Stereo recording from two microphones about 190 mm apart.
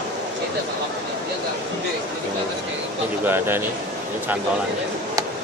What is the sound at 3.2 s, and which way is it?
Speech, 10° right (ahead or behind).